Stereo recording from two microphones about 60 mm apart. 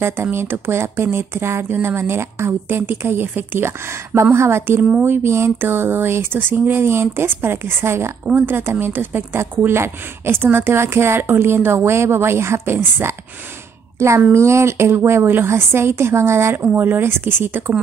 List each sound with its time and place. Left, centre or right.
0.0 s speech: right
8.3 s speech: right
13.9 s a woman's voice: right